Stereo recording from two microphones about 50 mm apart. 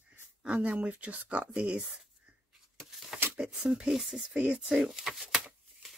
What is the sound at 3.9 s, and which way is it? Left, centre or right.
Speech, centre.